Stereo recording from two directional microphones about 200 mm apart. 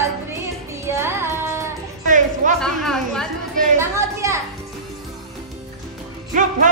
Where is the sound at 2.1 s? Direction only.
40° right (ahead or behind).